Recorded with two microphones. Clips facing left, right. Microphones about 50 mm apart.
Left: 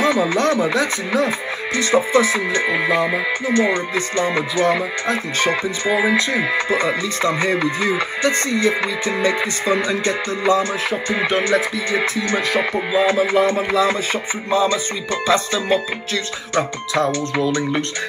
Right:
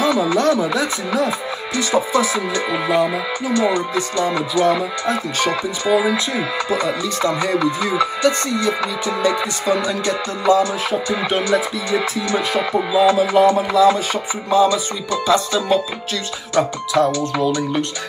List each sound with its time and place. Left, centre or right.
0.0 s speech: left